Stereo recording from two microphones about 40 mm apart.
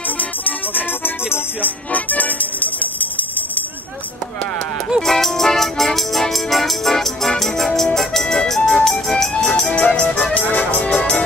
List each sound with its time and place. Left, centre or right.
0.2 s music: left
5.0 s music: centre; by 10.0 s left
10.5 s music: left
10.9 s music: left